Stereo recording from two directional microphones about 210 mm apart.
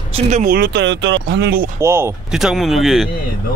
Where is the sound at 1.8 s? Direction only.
10° right (ahead or behind).